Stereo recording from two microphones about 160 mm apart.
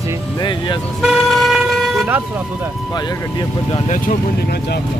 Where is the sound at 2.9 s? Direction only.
25° left (ahead or behind).